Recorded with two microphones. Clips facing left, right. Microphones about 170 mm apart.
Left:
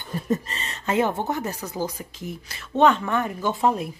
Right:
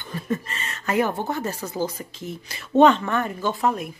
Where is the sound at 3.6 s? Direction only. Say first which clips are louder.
Left 2 dB; 30° left (ahead or behind).